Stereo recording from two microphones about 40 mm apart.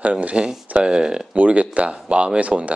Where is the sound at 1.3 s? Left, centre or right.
Right.